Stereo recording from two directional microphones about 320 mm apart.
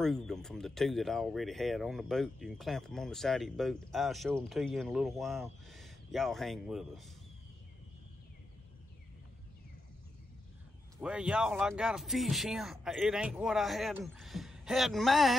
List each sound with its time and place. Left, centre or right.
0.0 s speech: centre
11.0 s speech: centre